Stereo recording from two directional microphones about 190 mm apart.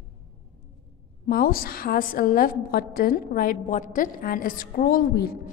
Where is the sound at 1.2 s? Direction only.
50° left (ahead or behind).